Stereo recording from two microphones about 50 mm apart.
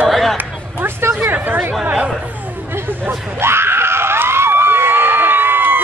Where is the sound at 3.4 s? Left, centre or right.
Right.